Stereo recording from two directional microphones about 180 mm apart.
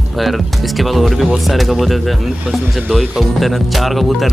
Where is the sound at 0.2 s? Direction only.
Centre (ahead or behind).